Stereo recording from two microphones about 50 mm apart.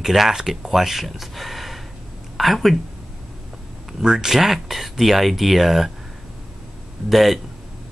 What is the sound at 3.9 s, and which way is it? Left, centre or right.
Speech, centre.